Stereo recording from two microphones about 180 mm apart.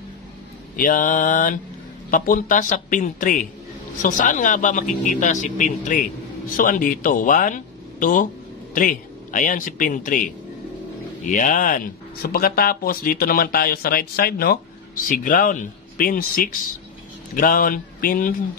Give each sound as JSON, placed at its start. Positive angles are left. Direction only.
{"t": 0.7, "sound": "a man's voice", "side_deg": 50}
{"t": 11.2, "sound": "speech", "side_deg": 45}